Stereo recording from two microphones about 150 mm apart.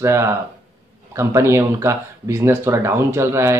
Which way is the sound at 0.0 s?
20° right (ahead or behind).